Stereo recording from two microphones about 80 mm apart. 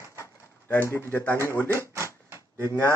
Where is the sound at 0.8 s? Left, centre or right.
Left.